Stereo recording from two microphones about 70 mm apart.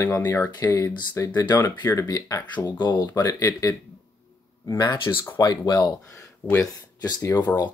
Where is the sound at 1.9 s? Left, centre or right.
Left.